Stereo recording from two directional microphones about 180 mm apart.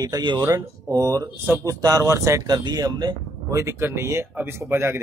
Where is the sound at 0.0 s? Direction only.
25° right (ahead or behind).